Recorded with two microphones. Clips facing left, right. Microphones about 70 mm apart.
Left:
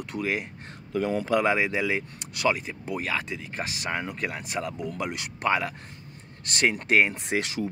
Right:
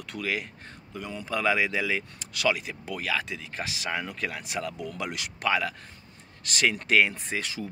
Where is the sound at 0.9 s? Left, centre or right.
Left.